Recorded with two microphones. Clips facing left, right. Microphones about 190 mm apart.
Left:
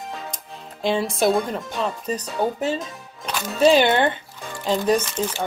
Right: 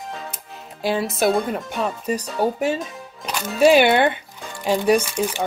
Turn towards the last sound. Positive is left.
turn(degrees=-10)  # may be behind; listen again after turning